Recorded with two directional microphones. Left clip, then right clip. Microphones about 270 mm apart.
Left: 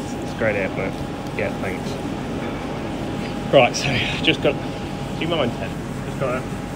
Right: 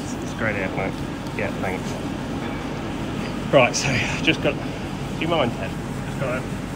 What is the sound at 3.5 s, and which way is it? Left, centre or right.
Speech, centre.